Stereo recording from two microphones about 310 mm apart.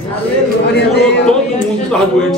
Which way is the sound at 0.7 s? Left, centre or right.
Left.